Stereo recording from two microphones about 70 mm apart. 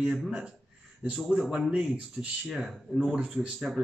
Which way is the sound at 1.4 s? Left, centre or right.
Centre.